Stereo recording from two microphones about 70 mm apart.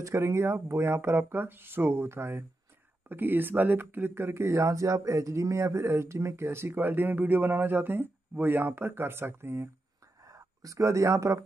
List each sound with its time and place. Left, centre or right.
0.0 s speech: right
10.2 s speech: right